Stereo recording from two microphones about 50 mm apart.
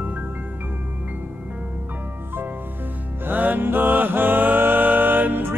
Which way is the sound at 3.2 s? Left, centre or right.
Right.